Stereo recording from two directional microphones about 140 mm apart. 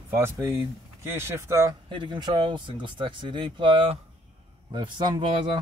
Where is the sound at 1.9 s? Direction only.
35° right (ahead or behind).